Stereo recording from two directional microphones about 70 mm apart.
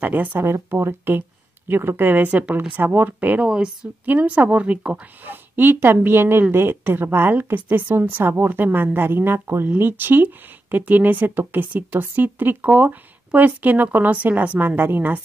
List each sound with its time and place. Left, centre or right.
0.0 s speech: right
0.5 s a woman's voice: right
3.4 s a woman's voice: centre
4.0 s speech: right
5.2 s a woman's voice: right